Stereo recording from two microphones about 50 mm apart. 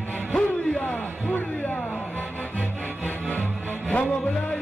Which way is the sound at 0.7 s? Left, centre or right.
Left.